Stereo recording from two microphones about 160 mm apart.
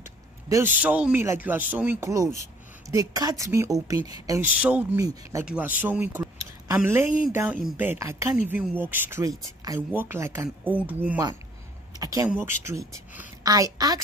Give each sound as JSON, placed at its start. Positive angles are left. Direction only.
{"t": 0.8, "sound": "a woman's voice", "side_deg": -10}
{"t": 4.6, "sound": "speech", "side_deg": -10}
{"t": 12.0, "sound": "a sound", "side_deg": -20}
{"t": 12.3, "sound": "a woman's voice", "side_deg": -15}